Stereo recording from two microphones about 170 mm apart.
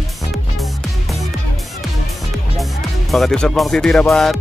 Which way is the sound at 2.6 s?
Centre (ahead or behind).